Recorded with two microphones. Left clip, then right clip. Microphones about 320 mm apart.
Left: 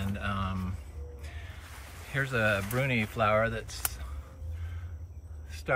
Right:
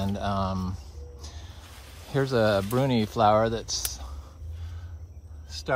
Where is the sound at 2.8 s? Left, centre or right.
Centre.